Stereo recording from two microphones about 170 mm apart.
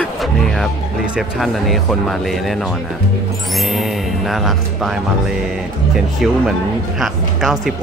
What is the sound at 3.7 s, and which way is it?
Speech, centre (ahead or behind).